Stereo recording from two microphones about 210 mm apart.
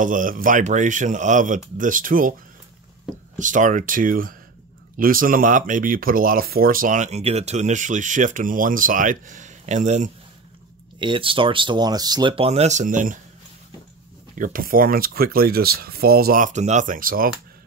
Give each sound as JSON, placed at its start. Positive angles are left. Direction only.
{"t": 0.0, "sound": "speech", "side_deg": -40}
{"t": 3.3, "sound": "speech", "side_deg": -35}
{"t": 11.0, "sound": "speech", "side_deg": -25}
{"t": 14.4, "sound": "speech", "side_deg": -40}